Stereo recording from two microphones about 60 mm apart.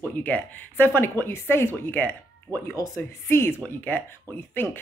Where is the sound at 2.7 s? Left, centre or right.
Left.